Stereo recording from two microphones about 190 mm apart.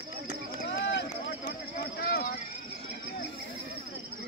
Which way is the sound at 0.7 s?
70° left (ahead or behind).